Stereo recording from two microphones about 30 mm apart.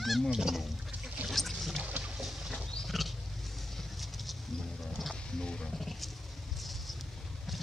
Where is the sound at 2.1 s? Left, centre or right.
Centre.